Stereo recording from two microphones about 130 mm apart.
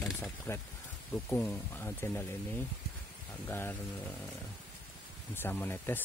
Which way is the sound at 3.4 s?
15° left (ahead or behind).